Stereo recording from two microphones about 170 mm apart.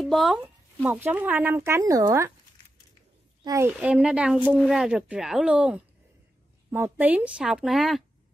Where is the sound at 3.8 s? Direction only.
10° right (ahead or behind).